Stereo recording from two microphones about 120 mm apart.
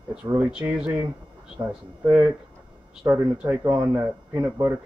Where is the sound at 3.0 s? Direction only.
25° right (ahead or behind).